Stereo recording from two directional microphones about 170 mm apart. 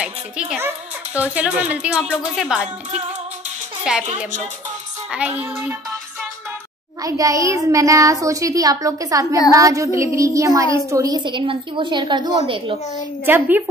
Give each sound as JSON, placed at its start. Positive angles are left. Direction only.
{"t": 0.0, "sound": "speech", "side_deg": -5}
{"t": 3.9, "sound": "a woman's voice", "side_deg": -5}
{"t": 5.1, "sound": "speech", "side_deg": -10}
{"t": 7.0, "sound": "a woman's voice", "side_deg": -20}
{"t": 13.2, "sound": "speech", "side_deg": -10}